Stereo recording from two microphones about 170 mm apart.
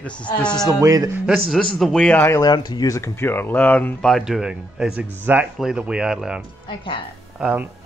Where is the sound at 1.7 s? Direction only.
5° left (ahead or behind).